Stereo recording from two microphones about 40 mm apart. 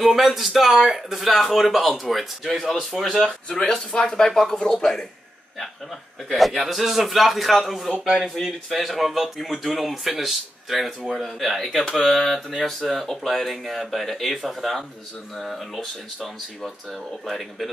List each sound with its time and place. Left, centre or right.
0.0 s speech: centre
3.9 s speech: centre
6.2 s speech: centre